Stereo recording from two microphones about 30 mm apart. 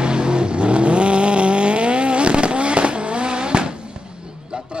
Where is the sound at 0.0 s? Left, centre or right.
Right.